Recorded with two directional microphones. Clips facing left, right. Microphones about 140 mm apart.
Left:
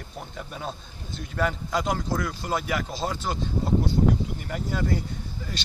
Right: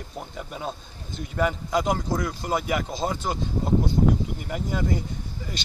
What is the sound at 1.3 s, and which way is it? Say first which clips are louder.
Speech: right 2 dB; 15° right (ahead or behind).